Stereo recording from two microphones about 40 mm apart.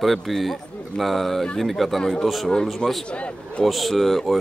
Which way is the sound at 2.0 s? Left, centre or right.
Centre.